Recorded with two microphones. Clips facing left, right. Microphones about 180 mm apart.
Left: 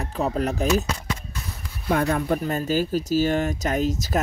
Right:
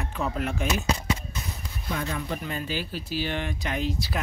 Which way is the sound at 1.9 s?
55° left (ahead or behind).